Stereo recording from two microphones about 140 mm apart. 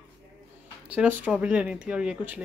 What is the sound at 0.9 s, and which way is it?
Speech, 10° right (ahead or behind).